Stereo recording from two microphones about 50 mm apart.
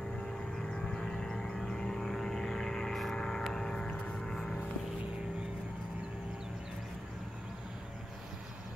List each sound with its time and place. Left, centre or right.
0.3 s vehicle: centre